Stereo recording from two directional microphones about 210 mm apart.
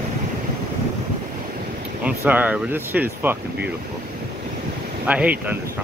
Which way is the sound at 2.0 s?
5° right (ahead or behind).